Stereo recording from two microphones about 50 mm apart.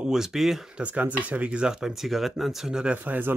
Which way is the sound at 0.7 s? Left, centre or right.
Right.